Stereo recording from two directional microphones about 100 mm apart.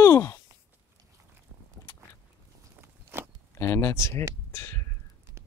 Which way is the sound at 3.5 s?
25° left (ahead or behind).